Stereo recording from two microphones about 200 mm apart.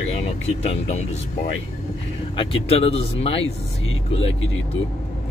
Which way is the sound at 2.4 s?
30° left (ahead or behind).